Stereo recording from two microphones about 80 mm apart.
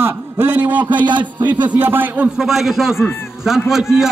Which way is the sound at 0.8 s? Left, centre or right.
Right.